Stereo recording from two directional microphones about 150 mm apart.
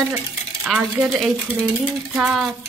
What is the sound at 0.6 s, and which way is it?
A woman's voice, 5° right (ahead or behind).